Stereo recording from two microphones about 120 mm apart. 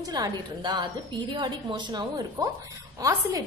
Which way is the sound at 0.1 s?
35° right (ahead or behind).